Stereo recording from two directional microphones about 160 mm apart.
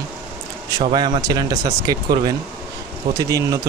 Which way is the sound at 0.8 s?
30° right (ahead or behind).